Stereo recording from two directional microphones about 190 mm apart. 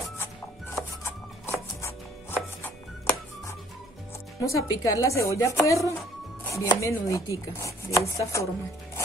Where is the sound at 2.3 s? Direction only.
10° left (ahead or behind).